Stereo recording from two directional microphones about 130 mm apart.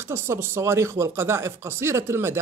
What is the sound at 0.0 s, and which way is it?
Speech, 15° right (ahead or behind).